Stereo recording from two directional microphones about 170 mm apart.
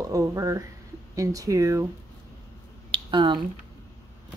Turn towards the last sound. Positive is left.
turn(degrees=-30)  # may be behind; listen again after turning